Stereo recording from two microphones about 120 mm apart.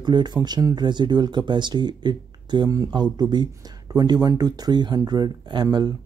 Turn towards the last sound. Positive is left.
turn(degrees=-35)  # may be behind; listen again after turning